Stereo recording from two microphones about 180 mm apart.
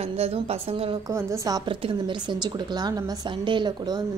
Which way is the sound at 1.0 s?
15° right (ahead or behind).